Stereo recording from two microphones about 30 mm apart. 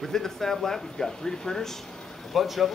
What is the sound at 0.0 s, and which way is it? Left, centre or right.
Speech, centre.